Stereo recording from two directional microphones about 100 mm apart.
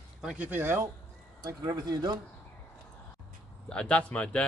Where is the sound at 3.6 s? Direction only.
10° left (ahead or behind).